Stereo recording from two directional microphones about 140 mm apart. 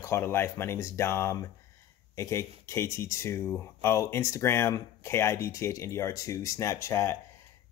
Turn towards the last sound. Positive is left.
turn(degrees=20)  # may be behind; listen again after turning